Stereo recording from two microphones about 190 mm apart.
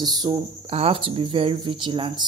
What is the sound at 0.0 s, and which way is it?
Speech, 20° right (ahead or behind).